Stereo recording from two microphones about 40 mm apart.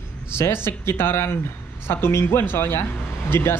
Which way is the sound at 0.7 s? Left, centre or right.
Left.